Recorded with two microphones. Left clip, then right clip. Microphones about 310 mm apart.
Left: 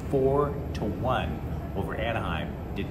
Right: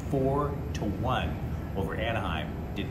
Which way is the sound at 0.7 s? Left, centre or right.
Centre.